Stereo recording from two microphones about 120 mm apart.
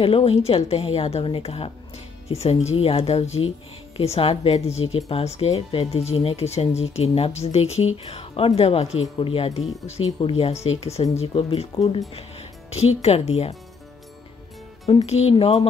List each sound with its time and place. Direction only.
0.0 s speech: 55° left (ahead or behind)
9.6 s speech: centre (ahead or behind)
9.8 s speech: 55° left (ahead or behind)
15.0 s speech: 60° left (ahead or behind)